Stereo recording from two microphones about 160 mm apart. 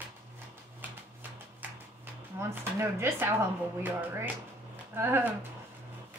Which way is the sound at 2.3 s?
15° right (ahead or behind).